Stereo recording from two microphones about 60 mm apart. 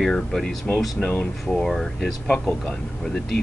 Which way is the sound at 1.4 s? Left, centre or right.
Centre.